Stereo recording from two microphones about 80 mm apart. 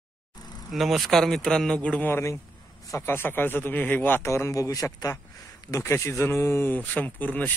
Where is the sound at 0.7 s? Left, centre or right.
Centre.